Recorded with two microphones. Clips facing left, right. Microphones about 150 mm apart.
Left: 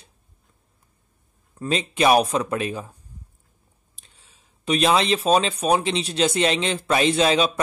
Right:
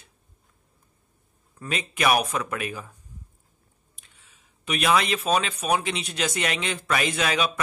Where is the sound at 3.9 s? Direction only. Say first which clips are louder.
Left 2 dB; 30° left (ahead or behind).